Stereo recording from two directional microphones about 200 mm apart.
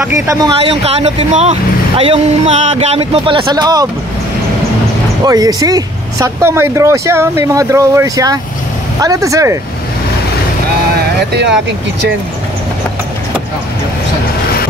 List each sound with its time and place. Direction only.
0.0 s speech: 15° right (ahead or behind)
0.8 s speech: 35° right (ahead or behind)
5.2 s speech: 20° right (ahead or behind)
11.3 s speech: 60° right (ahead or behind)